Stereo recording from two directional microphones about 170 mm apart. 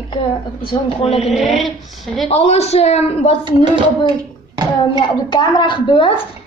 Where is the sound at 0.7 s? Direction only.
30° left (ahead or behind).